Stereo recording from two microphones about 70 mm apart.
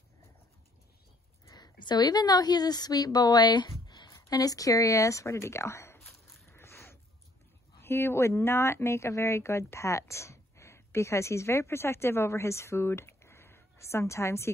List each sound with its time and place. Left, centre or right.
1.4 s a woman's voice: left
4.1 s speech: left
6.5 s a sound: left
7.8 s speech: left